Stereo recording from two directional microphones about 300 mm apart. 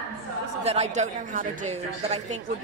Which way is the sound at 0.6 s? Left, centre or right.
Right.